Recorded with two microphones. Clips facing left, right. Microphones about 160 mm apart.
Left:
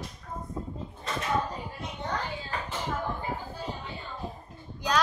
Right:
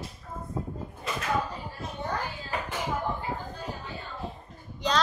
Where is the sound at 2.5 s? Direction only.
10° right (ahead or behind).